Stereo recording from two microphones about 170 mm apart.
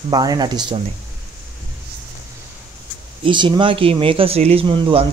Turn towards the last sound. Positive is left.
turn(degrees=-30)  # may be behind; listen again after turning